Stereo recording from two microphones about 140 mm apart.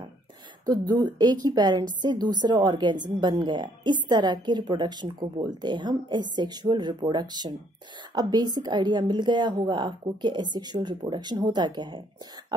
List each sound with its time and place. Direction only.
0.7 s a woman's voice: 30° right (ahead or behind)